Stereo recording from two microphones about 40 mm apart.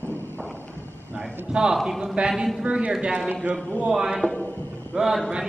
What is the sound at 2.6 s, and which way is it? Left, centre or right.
Speech, right.